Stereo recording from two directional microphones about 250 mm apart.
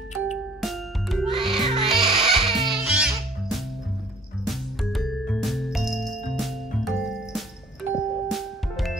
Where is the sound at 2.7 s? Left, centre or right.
Centre.